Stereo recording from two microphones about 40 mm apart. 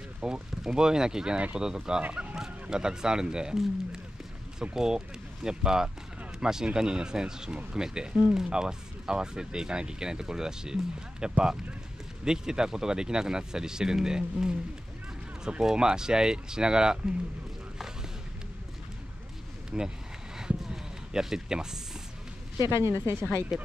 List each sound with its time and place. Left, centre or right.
0.2 s speech: centre
2.1 s a sound: centre
2.7 s speech: centre
15.6 s speech: centre
19.7 s speech: right
20.3 s a sound: centre
22.8 s speech: right
23.5 s speech: centre